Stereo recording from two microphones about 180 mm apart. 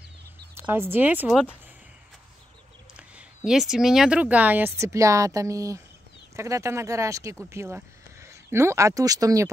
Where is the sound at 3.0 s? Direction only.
5° right (ahead or behind).